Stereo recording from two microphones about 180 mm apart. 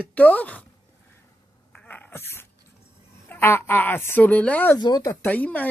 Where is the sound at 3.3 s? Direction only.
10° left (ahead or behind).